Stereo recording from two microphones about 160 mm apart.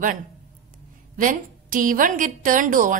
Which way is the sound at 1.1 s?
55° right (ahead or behind).